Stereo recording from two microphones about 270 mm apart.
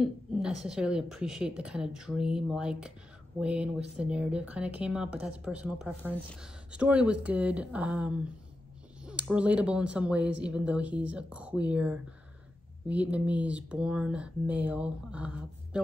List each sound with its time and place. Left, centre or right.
0.0 s speech: centre